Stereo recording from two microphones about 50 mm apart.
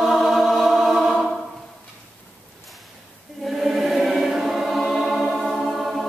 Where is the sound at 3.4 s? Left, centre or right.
Centre.